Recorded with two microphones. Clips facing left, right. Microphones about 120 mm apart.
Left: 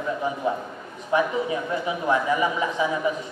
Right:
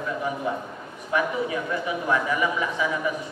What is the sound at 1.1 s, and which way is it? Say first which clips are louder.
A man's voice: left 2 dB; 25° left (ahead or behind).